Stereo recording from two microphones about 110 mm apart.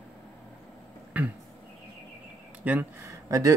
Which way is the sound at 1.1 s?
15° right (ahead or behind).